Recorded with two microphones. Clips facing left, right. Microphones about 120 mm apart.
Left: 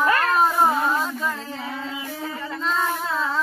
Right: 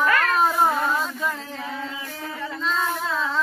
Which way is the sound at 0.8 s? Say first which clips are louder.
Left 1 dB; 5° left (ahead or behind).